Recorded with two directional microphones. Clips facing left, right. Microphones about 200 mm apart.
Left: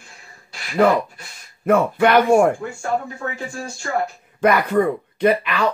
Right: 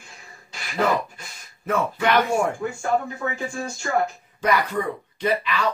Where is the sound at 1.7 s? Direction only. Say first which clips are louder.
Left 6 dB; 55° left (ahead or behind).